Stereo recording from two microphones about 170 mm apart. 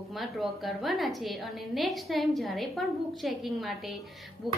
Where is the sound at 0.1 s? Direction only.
Centre (ahead or behind).